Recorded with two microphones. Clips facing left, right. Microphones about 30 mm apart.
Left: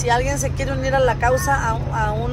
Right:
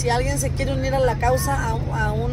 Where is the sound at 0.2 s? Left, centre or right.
Right.